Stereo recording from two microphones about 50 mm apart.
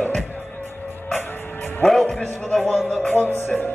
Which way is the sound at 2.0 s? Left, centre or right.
Left.